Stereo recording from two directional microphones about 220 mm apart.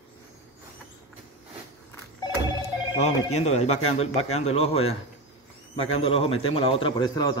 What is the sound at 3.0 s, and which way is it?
Speech, 30° left (ahead or behind).